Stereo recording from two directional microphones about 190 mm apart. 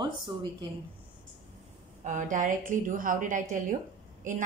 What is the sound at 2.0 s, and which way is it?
A woman's voice, 40° right (ahead or behind).